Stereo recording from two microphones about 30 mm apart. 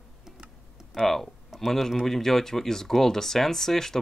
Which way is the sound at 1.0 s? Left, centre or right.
Centre.